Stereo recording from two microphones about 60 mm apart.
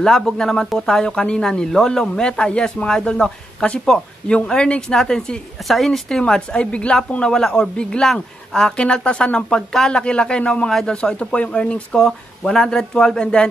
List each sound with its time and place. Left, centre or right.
0.0 s speech: centre